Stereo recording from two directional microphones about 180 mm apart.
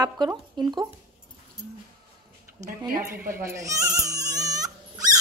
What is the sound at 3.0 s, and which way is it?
Speech, 55° right (ahead or behind).